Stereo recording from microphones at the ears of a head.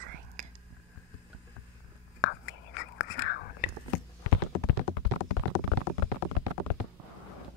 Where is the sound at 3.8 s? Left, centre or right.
Left.